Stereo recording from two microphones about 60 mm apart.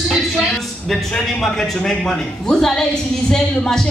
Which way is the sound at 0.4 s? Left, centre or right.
Centre.